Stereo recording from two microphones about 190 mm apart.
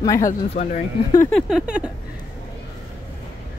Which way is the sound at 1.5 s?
5° right (ahead or behind).